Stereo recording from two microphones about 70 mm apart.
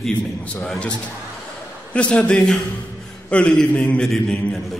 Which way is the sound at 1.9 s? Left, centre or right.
Centre.